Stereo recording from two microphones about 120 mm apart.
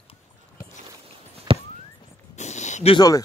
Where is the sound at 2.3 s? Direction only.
75° left (ahead or behind).